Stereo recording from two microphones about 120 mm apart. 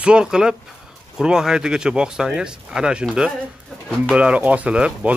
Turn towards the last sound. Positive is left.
turn(degrees=-10)  # may be behind; listen again after turning